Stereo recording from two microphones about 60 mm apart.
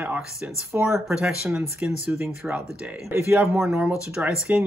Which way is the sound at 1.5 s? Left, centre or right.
Right.